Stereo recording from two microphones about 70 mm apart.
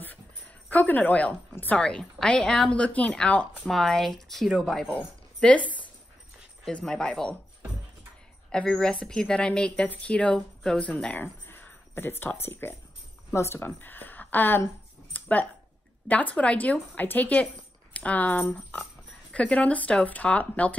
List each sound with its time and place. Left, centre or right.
0.7 s speech: left
1.8 s speech: centre
3.6 s speech: centre
8.5 s speech: centre
11.4 s a sound: left
13.3 s speech: left
13.6 s speech: left
15.1 s a sound: left
16.1 s speech: left